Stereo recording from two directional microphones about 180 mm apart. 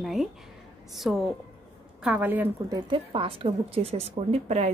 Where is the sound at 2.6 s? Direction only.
25° right (ahead or behind).